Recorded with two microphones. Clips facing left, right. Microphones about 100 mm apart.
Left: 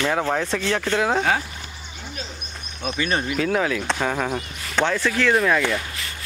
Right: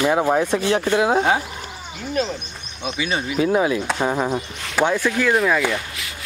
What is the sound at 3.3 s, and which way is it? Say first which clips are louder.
Speech: right 7 dB; 15° right (ahead or behind).